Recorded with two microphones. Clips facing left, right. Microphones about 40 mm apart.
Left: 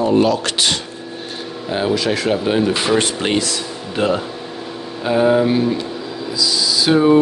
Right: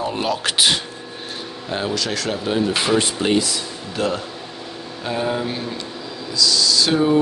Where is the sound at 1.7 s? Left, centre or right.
Centre.